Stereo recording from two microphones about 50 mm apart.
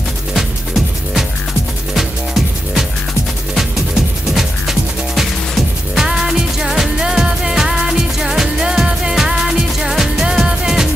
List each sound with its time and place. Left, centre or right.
0.3 s music: centre
4.3 s music: centre